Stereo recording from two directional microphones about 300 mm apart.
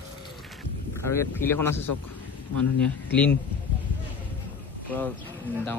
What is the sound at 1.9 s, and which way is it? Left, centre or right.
Speech, left.